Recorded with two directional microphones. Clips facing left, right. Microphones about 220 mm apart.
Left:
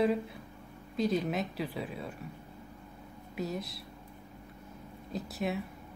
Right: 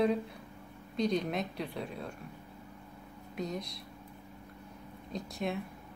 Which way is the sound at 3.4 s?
5° left (ahead or behind).